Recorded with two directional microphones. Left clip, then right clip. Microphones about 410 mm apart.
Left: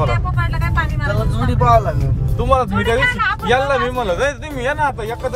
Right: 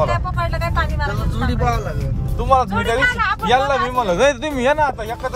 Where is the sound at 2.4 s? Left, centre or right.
Centre.